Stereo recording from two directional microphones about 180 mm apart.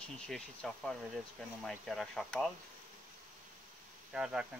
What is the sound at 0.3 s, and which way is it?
Speech, centre (ahead or behind).